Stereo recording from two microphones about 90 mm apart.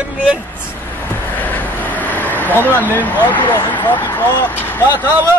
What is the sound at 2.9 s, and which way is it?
Speech, 20° left (ahead or behind).